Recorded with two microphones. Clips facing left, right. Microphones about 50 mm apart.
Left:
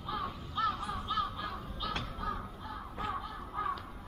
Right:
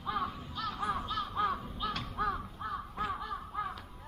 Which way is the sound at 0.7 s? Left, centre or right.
Right.